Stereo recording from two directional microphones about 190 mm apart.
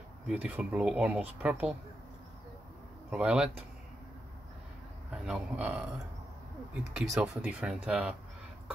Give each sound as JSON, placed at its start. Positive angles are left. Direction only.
{"t": 0.3, "sound": "speech", "side_deg": -5}
{"t": 3.1, "sound": "speech", "side_deg": -5}
{"t": 5.1, "sound": "speech", "side_deg": -5}